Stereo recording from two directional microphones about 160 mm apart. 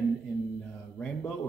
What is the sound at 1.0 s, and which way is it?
Speech, 5° left (ahead or behind).